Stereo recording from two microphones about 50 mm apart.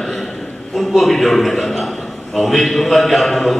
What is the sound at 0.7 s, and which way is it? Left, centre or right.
A man's voice, centre.